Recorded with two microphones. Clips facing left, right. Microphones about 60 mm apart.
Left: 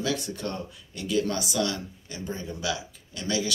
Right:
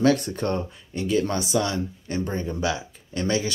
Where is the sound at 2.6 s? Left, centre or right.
Right.